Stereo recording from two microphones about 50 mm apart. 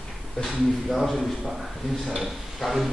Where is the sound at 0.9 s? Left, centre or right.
Centre.